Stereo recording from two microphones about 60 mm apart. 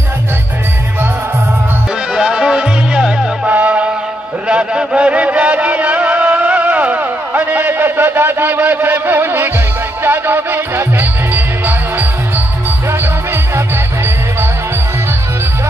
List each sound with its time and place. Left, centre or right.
2.1 s music: centre
3.4 s music: right